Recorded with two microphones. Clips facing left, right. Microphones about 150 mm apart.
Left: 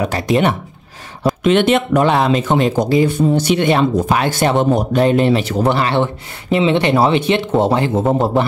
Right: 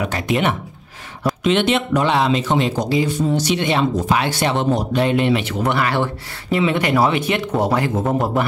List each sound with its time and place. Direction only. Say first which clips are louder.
0.0 s speech: left 4 dB; 35° left (ahead or behind)
1.4 s speech: left 4 dB; 50° left (ahead or behind); by 8.0 s 25° left (ahead or behind)